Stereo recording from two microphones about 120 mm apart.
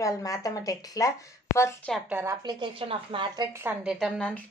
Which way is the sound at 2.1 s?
15° right (ahead or behind).